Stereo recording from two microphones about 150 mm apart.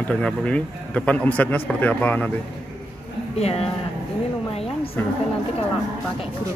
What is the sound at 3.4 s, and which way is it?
Speech, 45° left (ahead or behind).